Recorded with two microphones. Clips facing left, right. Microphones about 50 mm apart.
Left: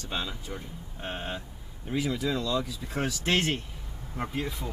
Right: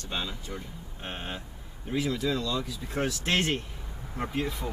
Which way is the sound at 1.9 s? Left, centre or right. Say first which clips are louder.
Even; centre.